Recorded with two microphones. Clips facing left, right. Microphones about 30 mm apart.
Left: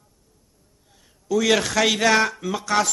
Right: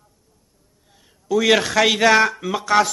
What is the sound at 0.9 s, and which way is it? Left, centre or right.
A man's voice, centre.